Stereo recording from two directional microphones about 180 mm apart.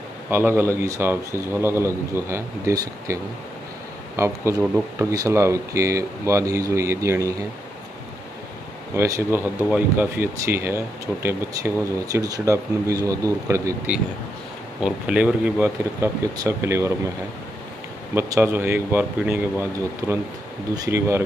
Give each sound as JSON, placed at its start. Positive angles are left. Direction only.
{"t": 0.3, "sound": "speech", "side_deg": -15}
{"t": 4.2, "sound": "speech", "side_deg": -15}
{"t": 8.9, "sound": "speech", "side_deg": -15}
{"t": 14.8, "sound": "speech", "side_deg": -5}
{"t": 18.1, "sound": "speech", "side_deg": -15}